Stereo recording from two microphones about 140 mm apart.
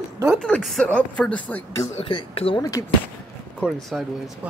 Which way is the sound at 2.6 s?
25° left (ahead or behind).